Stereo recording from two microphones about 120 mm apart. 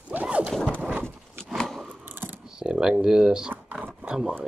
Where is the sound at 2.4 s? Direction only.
5° right (ahead or behind).